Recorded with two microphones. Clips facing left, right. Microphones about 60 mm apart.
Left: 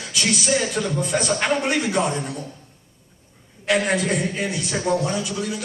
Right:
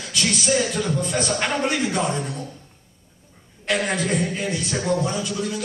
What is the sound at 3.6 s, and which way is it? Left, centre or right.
Speech, centre.